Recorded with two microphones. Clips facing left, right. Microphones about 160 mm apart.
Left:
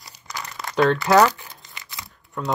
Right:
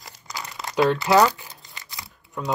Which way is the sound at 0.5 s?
20° right (ahead or behind).